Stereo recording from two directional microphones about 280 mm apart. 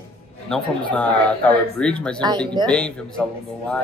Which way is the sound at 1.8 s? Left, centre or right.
Centre.